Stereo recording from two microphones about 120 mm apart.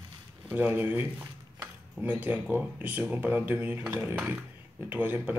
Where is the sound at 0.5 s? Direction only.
15° right (ahead or behind).